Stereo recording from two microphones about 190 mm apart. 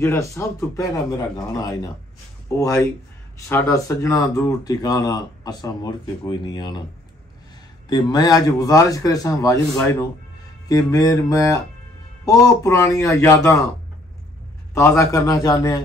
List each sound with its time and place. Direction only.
0.0 s speech: 15° left (ahead or behind)
7.9 s speech: 20° left (ahead or behind)
14.7 s speech: 15° left (ahead or behind)